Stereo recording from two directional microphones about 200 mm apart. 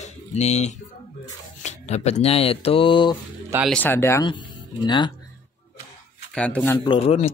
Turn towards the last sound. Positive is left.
turn(degrees=30)  # may be behind; listen again after turning